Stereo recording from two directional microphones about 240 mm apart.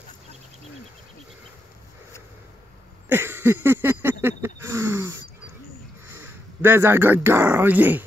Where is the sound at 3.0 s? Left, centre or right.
Centre.